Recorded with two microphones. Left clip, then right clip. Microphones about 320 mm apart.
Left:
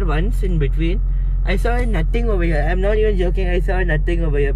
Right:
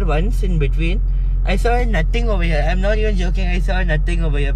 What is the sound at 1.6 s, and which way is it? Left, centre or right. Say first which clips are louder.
Speech: right 6 dB; right.